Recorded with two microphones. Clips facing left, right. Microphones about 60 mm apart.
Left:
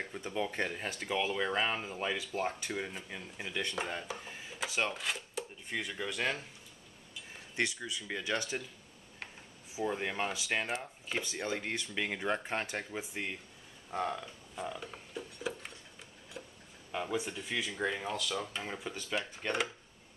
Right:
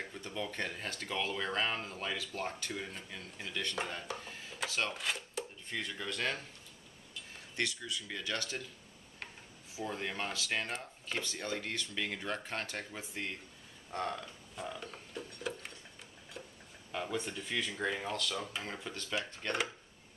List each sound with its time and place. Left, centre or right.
0.0 s speech: centre
3.7 s speech: centre
4.9 s speech: centre
5.7 s speech: centre
7.5 s speech: left
9.8 s speech: centre
13.8 s a sound: centre
16.3 s tick-tock: centre
16.9 s speech: centre